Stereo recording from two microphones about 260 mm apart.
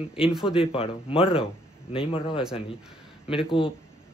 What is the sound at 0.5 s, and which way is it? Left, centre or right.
Speech, left.